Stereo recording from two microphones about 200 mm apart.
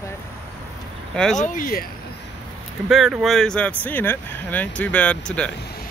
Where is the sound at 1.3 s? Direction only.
40° left (ahead or behind).